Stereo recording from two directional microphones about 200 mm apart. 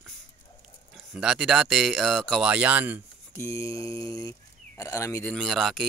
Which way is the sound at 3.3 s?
15° left (ahead or behind).